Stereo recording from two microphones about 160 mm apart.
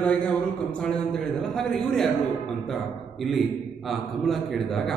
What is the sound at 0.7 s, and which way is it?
A man's voice, 5° left (ahead or behind).